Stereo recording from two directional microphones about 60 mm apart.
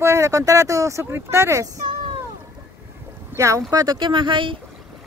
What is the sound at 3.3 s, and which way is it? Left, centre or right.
Speech, right.